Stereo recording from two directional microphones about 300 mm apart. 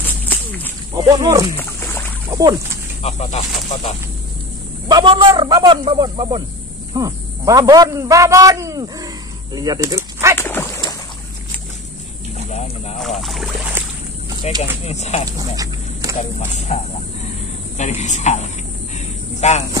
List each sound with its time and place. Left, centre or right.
1.0 s speech: centre
3.0 s speech: left
4.8 s a man's voice: centre
10.3 s dog: centre
12.4 s a sound: left
13.2 s speech: centre
14.5 s speech: left
15.2 s speech: centre
16.2 s speech: left
17.7 s speech: left
18.9 s a sound: left